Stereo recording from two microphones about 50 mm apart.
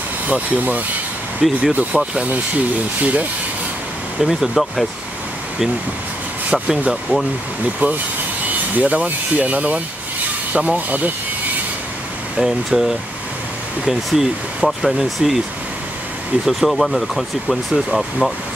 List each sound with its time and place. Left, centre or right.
0.3 s speech: right
3.0 s speech: right
4.2 s speech: centre
6.9 s speech: centre
7.8 s speech: right
12.4 s speech: centre
16.4 s speech: centre